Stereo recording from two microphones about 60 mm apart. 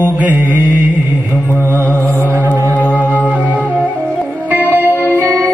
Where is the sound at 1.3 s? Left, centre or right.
Left.